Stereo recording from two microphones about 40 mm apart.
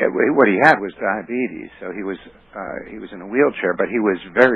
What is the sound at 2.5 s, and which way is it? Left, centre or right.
Speech, left.